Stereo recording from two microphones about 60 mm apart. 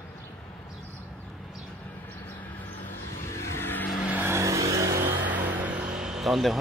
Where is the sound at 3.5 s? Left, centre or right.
Left.